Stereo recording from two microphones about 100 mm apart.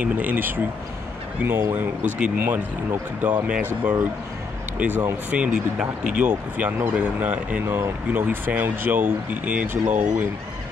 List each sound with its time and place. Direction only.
0.0 s speech: 15° right (ahead or behind)
5.3 s speech: 10° right (ahead or behind)